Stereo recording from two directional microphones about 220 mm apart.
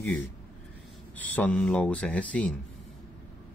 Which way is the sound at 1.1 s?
5° left (ahead or behind).